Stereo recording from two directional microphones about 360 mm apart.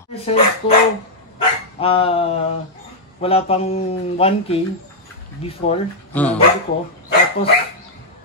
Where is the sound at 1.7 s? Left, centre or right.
Centre.